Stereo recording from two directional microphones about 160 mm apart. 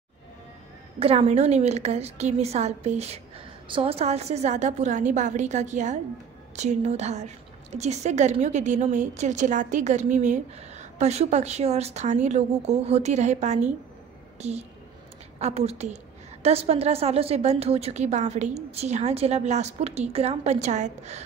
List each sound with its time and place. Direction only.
0.9 s a woman's voice: 40° right (ahead or behind)